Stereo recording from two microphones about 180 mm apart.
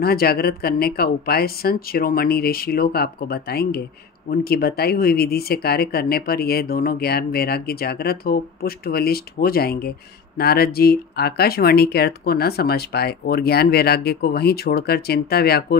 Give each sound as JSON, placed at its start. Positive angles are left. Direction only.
{"t": 0.0, "sound": "speech", "side_deg": 60}